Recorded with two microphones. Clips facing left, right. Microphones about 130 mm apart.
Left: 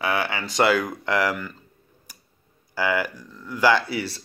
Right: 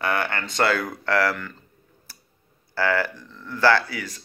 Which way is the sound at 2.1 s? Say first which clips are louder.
Even; 15° left (ahead or behind).